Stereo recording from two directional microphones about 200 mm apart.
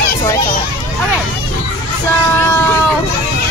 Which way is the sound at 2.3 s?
10° left (ahead or behind).